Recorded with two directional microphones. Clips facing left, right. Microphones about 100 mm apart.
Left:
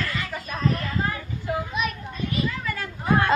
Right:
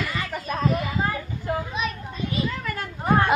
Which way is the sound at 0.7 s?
10° right (ahead or behind).